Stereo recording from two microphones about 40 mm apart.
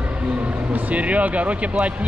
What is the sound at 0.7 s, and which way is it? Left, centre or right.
Speech, right.